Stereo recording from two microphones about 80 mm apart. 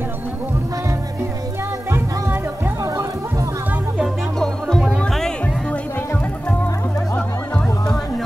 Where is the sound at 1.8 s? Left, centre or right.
Right.